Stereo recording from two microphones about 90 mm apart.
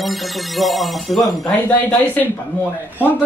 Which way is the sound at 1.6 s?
15° left (ahead or behind).